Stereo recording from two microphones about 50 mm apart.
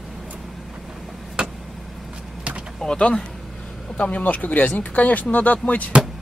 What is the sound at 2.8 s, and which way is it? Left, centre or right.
Speech, left.